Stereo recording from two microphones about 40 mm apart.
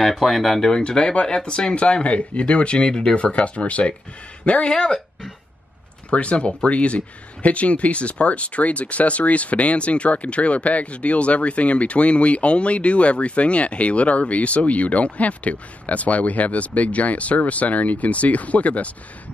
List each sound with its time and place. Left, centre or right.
0.2 s speech: centre
0.7 s speech: centre
2.9 s speech: centre
3.2 s speech: left
4.5 s speech: left
6.0 s speech: left